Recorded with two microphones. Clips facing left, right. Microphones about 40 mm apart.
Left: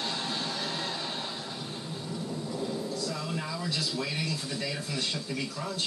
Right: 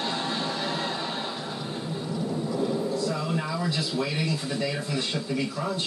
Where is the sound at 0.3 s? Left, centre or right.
Centre.